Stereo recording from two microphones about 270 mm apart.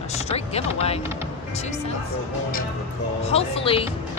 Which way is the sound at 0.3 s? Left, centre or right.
Left.